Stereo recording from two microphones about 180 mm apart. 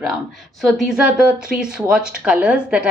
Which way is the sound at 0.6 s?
Centre (ahead or behind).